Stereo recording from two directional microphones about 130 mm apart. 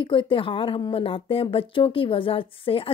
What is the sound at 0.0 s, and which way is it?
Speech, 40° left (ahead or behind).